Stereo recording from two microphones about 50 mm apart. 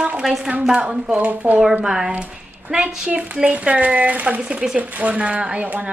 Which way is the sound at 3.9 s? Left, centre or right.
Right.